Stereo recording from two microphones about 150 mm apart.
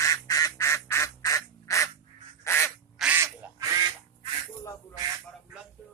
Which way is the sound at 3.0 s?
10° right (ahead or behind).